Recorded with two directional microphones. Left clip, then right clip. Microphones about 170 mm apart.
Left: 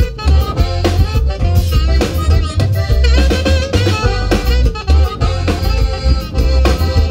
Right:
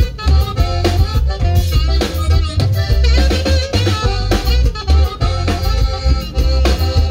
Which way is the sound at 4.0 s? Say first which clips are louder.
Left 2 dB; 35° left (ahead or behind).